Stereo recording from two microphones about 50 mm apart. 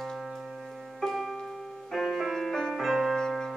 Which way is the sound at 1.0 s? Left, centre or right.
Centre.